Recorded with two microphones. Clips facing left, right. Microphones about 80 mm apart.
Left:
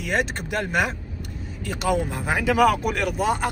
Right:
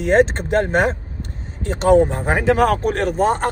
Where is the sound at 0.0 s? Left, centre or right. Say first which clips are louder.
Right 10 dB; right.